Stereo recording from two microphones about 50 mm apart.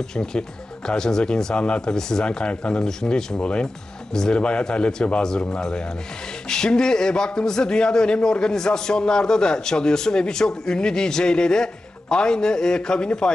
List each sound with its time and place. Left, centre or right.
0.1 s a man's voice: centre